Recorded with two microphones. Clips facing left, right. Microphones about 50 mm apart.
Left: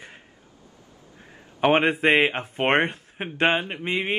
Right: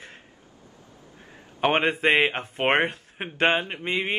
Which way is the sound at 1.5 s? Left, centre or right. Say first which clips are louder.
Left 3 dB; centre.